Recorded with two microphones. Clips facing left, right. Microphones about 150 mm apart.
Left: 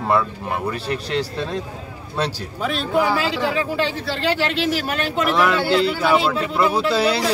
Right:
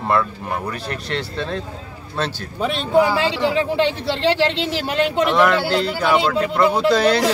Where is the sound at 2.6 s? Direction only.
25° right (ahead or behind).